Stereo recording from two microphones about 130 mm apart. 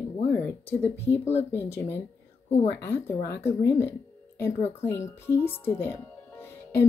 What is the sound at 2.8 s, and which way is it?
Speech, 20° left (ahead or behind).